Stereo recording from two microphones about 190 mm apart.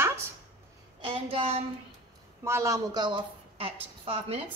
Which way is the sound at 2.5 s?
15° right (ahead or behind).